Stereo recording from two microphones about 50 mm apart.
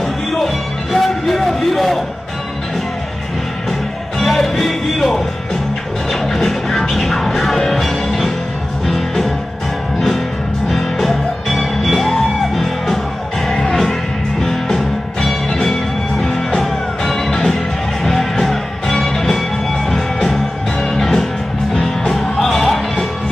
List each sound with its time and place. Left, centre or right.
0.9 s music: centre
4.2 s music: centre
6.2 s music: centre